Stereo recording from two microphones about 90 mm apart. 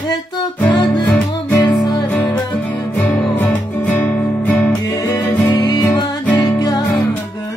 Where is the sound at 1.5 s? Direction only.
40° left (ahead or behind).